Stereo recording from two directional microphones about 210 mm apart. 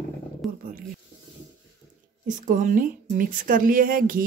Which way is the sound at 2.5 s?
35° right (ahead or behind).